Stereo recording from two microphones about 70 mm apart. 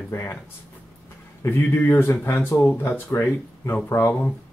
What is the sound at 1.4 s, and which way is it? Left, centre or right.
Speech, left.